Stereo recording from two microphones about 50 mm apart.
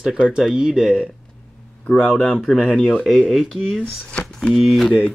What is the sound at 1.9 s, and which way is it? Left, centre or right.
Speech, centre.